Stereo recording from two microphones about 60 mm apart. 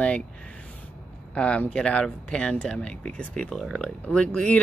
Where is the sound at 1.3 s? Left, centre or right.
Centre.